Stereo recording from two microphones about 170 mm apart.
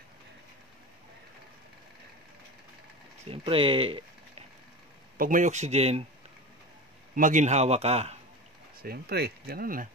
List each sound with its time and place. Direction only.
3.3 s speech: 30° right (ahead or behind)
5.1 s speech: 55° right (ahead or behind); by 6.0 s 40° right (ahead or behind)
7.2 s a man's voice: 50° right (ahead or behind)
8.8 s speech: 70° right (ahead or behind)